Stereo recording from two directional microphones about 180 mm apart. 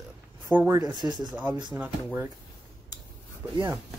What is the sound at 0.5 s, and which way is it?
Speech, 10° right (ahead or behind).